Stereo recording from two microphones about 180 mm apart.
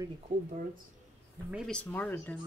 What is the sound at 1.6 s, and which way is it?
Speech, 5° left (ahead or behind).